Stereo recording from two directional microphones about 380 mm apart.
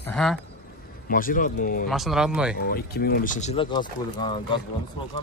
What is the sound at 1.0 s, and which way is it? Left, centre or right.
Speech, left.